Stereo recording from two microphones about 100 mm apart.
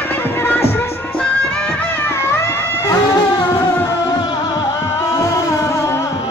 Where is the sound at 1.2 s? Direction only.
10° left (ahead or behind); by 2.9 s 25° left (ahead or behind).